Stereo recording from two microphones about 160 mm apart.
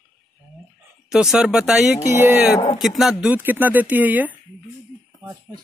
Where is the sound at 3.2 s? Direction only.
10° right (ahead or behind).